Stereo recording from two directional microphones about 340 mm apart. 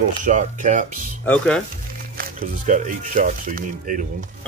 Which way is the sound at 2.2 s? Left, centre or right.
Right.